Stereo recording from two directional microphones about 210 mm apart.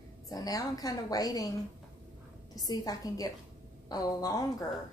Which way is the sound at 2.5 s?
15° left (ahead or behind).